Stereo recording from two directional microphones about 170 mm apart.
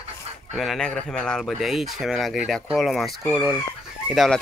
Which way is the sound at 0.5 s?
Centre (ahead or behind).